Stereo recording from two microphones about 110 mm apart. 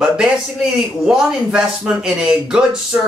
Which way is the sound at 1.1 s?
5° right (ahead or behind).